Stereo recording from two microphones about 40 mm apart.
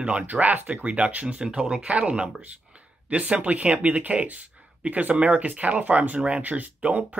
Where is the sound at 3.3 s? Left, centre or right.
Right.